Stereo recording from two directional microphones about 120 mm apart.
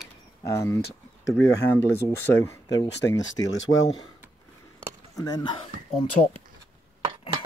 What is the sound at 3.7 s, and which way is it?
Speech, 80° left.